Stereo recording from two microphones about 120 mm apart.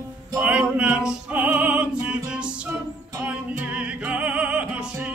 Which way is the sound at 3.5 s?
10° right (ahead or behind).